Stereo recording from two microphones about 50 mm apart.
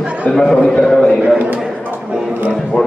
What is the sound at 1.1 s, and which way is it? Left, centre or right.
Speech, centre.